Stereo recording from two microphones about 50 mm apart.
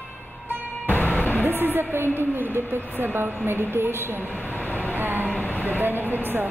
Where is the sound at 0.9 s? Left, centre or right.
Left.